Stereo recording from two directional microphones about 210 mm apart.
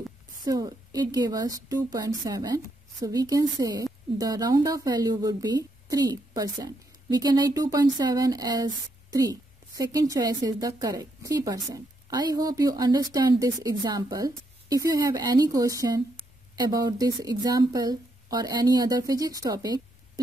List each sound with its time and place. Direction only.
0.5 s a woman's voice: 15° right (ahead or behind)